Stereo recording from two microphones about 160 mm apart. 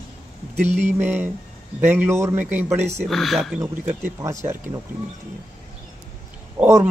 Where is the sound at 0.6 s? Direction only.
45° right (ahead or behind).